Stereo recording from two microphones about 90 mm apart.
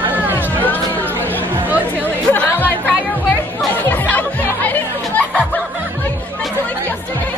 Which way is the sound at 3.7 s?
20° left (ahead or behind).